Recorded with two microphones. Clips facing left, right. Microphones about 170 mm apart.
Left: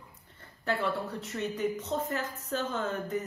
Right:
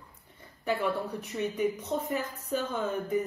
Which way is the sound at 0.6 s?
15° right (ahead or behind).